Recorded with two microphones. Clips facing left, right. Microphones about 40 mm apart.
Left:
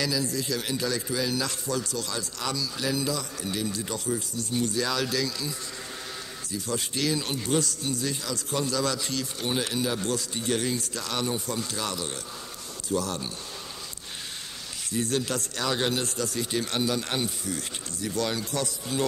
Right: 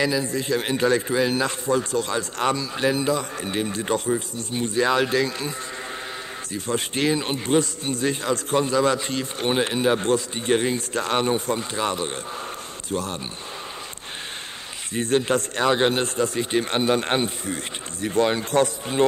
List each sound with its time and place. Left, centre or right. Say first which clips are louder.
0.0 s a man's voice: right 5 dB; right
6.5 s a man's voice: right 5 dB; right
14.9 s a man's voice: right 7 dB; right